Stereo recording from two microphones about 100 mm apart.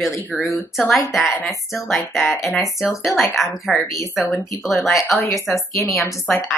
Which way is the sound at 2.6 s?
30° left (ahead or behind).